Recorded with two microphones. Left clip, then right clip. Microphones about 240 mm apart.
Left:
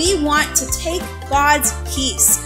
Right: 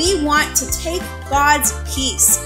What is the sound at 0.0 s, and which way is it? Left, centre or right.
A child's voice, centre.